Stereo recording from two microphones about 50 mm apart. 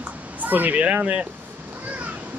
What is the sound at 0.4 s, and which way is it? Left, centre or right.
Speech, right.